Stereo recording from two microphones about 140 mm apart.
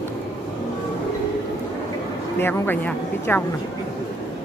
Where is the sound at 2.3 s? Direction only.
15° left (ahead or behind).